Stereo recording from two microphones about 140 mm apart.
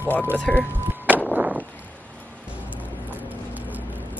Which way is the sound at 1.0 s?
10° right (ahead or behind).